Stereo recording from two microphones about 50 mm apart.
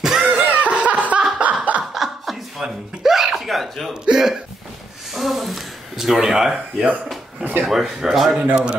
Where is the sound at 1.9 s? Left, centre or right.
Centre.